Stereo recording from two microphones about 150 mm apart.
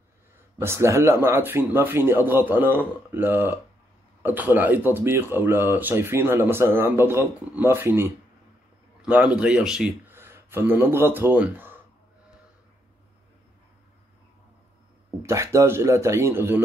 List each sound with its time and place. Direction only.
0.6 s speech: 20° right (ahead or behind)
15.2 s speech: 20° right (ahead or behind)